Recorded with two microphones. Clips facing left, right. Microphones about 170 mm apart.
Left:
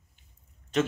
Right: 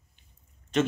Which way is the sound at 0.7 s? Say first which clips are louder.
Right 1 dB; centre (ahead or behind).